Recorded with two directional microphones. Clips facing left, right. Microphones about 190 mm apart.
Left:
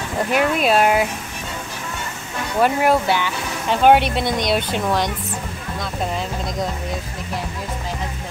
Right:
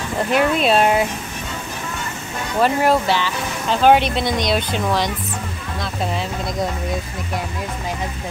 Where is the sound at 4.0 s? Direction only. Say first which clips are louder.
Right 1 dB; 55° left (ahead or behind).